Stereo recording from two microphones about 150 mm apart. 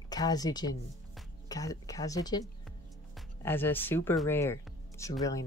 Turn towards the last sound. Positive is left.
turn(degrees=20)  # may be behind; listen again after turning